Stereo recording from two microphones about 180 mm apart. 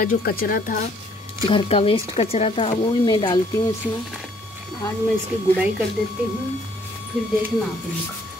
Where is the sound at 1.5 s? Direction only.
30° left (ahead or behind).